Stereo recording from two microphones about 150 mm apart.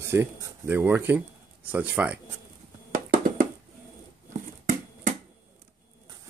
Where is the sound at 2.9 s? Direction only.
60° right (ahead or behind).